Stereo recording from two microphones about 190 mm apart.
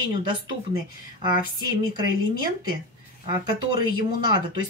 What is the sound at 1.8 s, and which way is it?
Speech, 20° right (ahead or behind).